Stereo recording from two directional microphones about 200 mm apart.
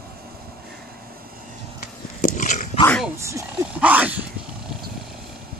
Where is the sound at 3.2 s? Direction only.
15° right (ahead or behind).